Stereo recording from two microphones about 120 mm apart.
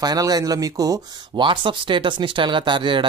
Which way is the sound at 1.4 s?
45° right (ahead or behind).